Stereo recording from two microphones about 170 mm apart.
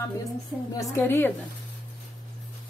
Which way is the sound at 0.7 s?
15° left (ahead or behind).